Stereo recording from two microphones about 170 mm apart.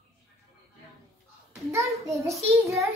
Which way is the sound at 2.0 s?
15° right (ahead or behind).